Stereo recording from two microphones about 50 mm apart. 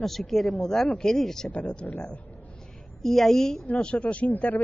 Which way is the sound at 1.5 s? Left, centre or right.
Left.